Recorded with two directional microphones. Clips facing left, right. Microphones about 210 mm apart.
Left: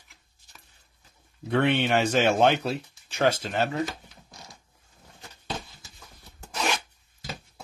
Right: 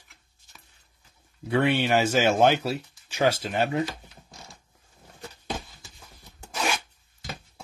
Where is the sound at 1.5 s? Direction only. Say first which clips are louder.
Right 1 dB; 5° right (ahead or behind).